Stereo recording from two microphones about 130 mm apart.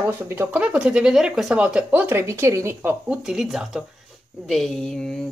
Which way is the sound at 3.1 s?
5° right (ahead or behind).